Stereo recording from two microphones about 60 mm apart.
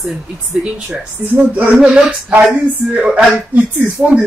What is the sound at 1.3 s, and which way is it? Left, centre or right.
Speech, right.